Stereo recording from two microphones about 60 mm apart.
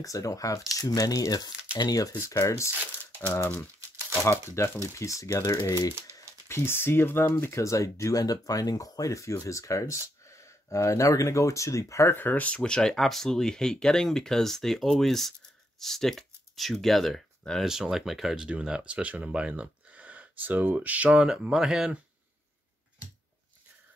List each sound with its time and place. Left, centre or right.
0.0 s speech: left
0.7 s speech: left
2.1 s speech: left
4.1 s speech: left
6.5 s speech: left
7.5 s speech: left
12.2 s speech: left; by 17.6 s centre
17.6 s speech: centre
21.3 s speech: centre